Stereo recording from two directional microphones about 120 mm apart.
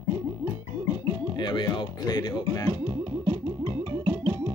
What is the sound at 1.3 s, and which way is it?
Speech, 40° left (ahead or behind).